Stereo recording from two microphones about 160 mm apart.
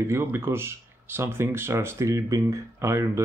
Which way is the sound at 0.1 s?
15° right (ahead or behind).